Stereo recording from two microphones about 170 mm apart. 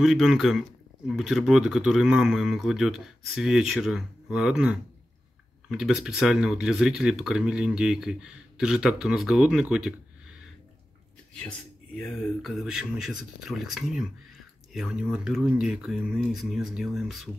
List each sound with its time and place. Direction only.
0.0 s speech: centre (ahead or behind)
11.3 s speech: 5° left (ahead or behind)